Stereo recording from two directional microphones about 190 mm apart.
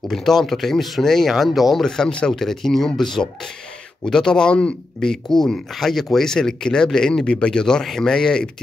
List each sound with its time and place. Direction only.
0.1 s speech: centre (ahead or behind)